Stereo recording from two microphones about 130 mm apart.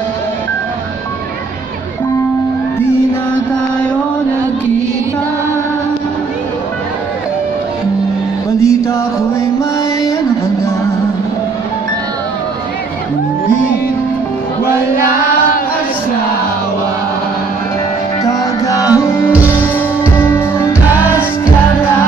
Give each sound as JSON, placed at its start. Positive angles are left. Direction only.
{"t": 8.5, "sound": "music", "side_deg": 25}
{"t": 18.2, "sound": "music", "side_deg": 25}